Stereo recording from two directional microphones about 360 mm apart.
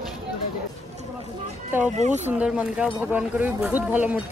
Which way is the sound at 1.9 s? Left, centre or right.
Centre.